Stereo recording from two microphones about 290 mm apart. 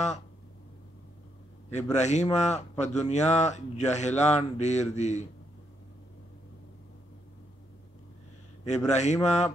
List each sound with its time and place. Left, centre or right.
1.7 s speech: left
8.6 s speech: left